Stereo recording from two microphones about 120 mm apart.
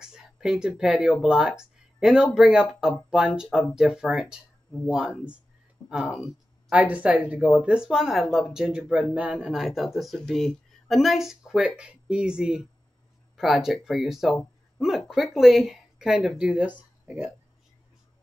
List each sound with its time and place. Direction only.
0.0 s speech: 5° right (ahead or behind)